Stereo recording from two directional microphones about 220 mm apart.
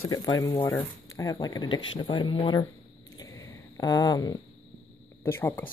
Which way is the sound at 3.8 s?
15° left (ahead or behind).